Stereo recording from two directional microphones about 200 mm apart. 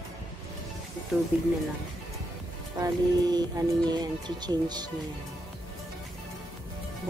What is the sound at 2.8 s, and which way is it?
Speech, 20° right (ahead or behind).